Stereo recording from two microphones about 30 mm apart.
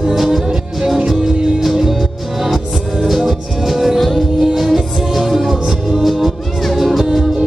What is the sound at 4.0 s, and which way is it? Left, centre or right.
Music, centre.